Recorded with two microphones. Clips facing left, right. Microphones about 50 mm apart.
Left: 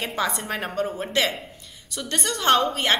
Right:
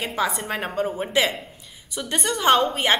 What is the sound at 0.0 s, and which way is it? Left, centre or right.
A woman's voice, centre.